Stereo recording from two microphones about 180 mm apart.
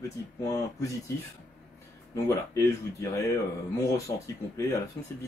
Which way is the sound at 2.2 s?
15° left (ahead or behind).